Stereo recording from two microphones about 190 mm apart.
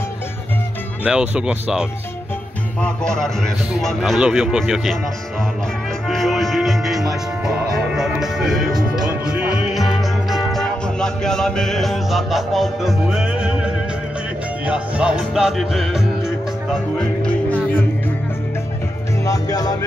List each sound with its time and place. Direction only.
1.0 s music: 5° right (ahead or behind)
6.0 s music: centre (ahead or behind)
14.7 s music: 5° right (ahead or behind)
17.0 s music: 5° left (ahead or behind)
19.2 s music: 20° left (ahead or behind)